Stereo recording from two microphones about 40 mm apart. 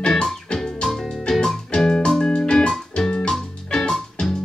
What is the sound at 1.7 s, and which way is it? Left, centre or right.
Music, centre.